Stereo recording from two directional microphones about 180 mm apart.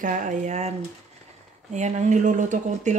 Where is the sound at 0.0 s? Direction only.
45° right (ahead or behind).